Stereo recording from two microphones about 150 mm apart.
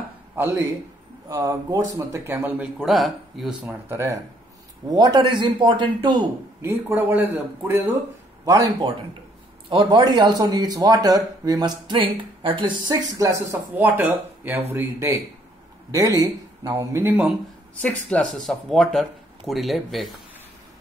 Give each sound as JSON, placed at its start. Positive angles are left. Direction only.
{"t": 0.4, "sound": "speech", "side_deg": -15}
{"t": 4.9, "sound": "a man's voice", "side_deg": -30}
{"t": 6.6, "sound": "speech", "side_deg": -15}
{"t": 8.5, "sound": "a man's voice", "side_deg": -30}
{"t": 17.8, "sound": "speech", "side_deg": 5}